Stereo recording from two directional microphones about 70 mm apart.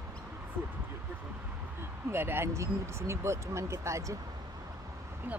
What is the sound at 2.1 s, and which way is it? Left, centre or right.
Speech, right.